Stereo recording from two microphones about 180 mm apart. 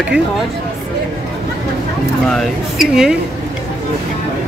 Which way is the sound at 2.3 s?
Centre (ahead or behind).